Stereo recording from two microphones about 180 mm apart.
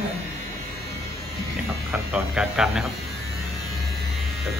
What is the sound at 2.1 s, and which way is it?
Speech, 5° right (ahead or behind).